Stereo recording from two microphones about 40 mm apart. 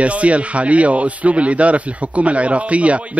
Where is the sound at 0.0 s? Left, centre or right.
Right.